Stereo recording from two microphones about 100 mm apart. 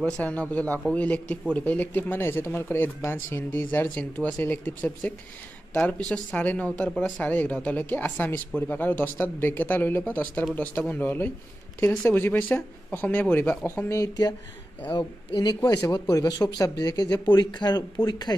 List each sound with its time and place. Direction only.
0.0 s speech: 15° left (ahead or behind)
13.8 s speech: 35° left (ahead or behind)